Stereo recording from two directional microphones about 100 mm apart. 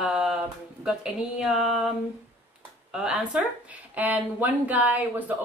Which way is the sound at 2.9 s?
10° right (ahead or behind).